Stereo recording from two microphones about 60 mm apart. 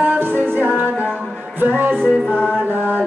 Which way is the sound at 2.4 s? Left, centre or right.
Right.